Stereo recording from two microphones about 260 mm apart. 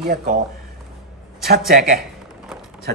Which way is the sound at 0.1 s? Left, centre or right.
Right.